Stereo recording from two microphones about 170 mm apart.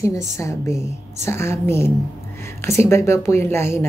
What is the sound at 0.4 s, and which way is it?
A woman's voice, 20° left (ahead or behind).